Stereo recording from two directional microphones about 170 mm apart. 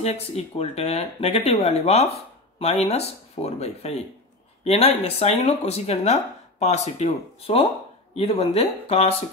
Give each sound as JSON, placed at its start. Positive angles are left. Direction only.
{"t": 0.0, "sound": "speech", "side_deg": 40}